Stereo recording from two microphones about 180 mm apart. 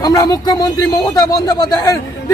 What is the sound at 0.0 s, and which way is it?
Speech, 20° left (ahead or behind).